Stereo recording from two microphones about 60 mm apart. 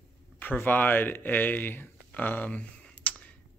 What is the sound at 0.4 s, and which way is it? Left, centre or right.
Speech, left.